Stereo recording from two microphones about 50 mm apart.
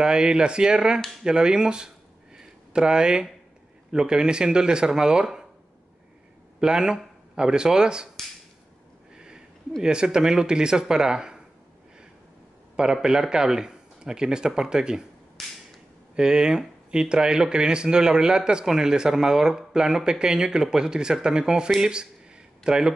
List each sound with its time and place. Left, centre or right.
0.0 s speech: centre
2.3 s a sound: centre
3.9 s speech: centre
6.6 s speech: centre
9.1 s a sound: centre
9.8 s speech: centre
12.7 s speech: centre
15.4 s a sound: centre
16.2 s speech: centre